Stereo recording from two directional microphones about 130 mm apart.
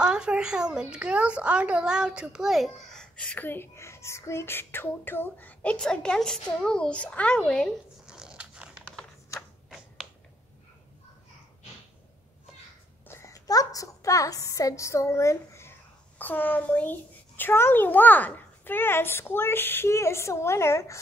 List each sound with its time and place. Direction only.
0.0 s a child's voice: 5° right (ahead or behind)
8.1 s biting: 5° right (ahead or behind)
13.1 s a child's voice: 25° left (ahead or behind)